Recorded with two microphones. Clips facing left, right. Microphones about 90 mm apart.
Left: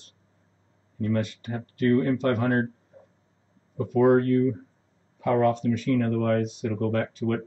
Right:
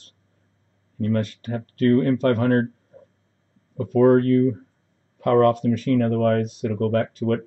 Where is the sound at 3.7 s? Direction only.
75° right (ahead or behind).